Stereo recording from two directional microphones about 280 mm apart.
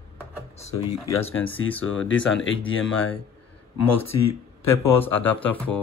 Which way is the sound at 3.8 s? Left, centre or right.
Left.